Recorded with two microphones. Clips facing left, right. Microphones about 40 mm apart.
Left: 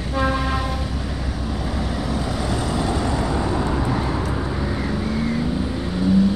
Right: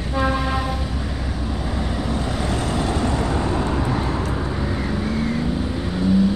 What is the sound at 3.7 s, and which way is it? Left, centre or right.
Vehicle, centre.